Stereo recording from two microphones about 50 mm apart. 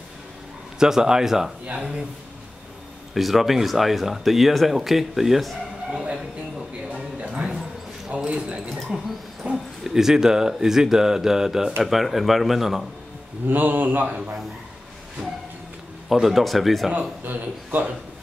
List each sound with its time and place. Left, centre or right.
0.7 s speech: centre
3.2 s speech: centre
6.9 s music: right
8.3 s speech: right
8.6 s speech: centre
13.5 s speech: right
16.1 s speech: centre
17.2 s speech: right